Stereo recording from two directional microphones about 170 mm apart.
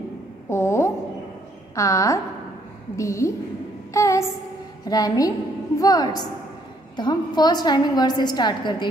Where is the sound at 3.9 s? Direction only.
20° left (ahead or behind).